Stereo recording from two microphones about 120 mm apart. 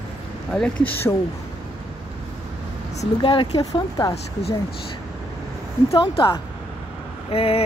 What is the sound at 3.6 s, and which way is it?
Speech, 30° left (ahead or behind).